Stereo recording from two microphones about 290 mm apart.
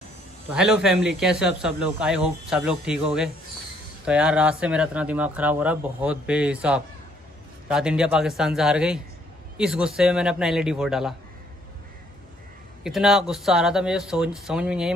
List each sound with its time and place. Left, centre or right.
0.5 s speech: centre
12.8 s speech: centre